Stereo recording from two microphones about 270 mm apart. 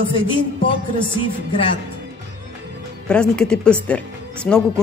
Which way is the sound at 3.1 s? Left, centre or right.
Centre.